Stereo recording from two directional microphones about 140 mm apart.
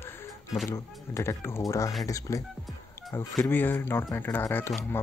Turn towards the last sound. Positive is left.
turn(degrees=15)  # may be behind; listen again after turning